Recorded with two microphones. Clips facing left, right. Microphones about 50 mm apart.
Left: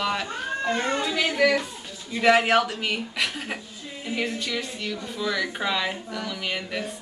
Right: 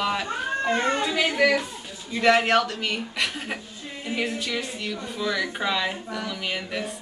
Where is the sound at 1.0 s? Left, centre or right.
Centre.